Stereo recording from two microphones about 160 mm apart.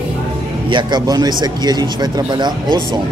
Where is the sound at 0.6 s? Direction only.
30° right (ahead or behind).